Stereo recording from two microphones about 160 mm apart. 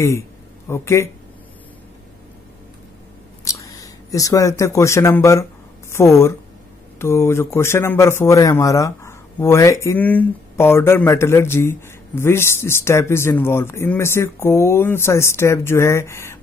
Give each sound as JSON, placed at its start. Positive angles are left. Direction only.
{"t": 0.7, "sound": "speech", "side_deg": 15}
{"t": 3.4, "sound": "speech", "side_deg": 20}